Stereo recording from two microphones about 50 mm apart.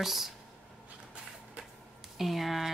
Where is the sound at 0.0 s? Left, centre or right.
Centre.